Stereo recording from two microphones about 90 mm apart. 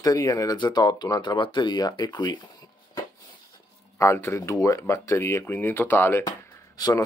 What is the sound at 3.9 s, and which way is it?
Speech, 30° left (ahead or behind).